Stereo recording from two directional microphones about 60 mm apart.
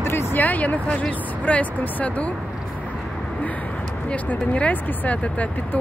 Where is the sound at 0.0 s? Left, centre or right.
Left.